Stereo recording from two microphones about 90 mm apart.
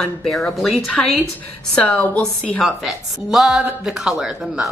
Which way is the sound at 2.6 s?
5° right (ahead or behind).